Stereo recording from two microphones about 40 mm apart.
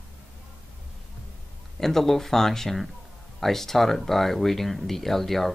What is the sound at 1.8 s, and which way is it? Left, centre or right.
Speech, centre.